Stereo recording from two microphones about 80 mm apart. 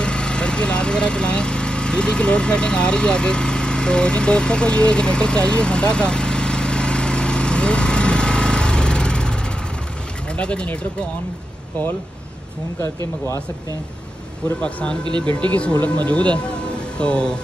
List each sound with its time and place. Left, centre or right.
0.0 s vehicle: centre
10.3 s speech: centre
14.6 s speech: centre